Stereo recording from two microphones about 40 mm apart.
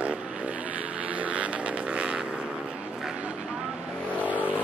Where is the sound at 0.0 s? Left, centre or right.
Right.